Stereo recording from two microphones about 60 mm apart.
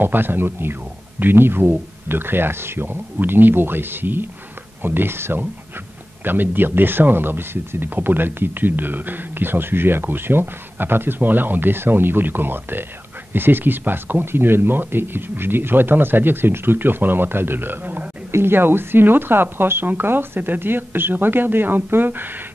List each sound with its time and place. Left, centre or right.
0.0 s speech: right
18.3 s speech: right